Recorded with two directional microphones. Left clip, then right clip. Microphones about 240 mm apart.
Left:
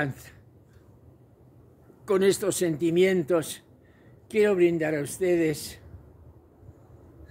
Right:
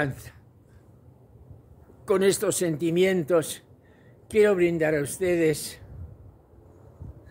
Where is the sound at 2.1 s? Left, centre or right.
Centre.